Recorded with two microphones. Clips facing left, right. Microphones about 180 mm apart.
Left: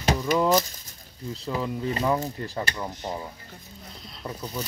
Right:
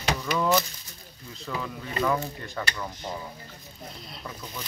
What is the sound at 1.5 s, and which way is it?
Speech, 30° left (ahead or behind).